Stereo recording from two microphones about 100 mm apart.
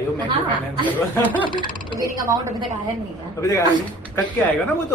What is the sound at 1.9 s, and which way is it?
Speech, 35° right (ahead or behind).